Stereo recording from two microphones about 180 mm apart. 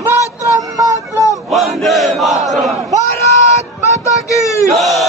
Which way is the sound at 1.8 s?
Centre (ahead or behind).